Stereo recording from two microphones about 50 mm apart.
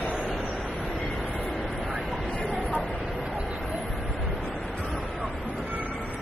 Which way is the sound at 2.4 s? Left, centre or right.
Left.